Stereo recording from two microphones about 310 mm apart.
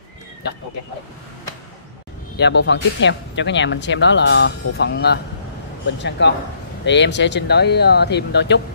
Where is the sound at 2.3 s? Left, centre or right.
Left.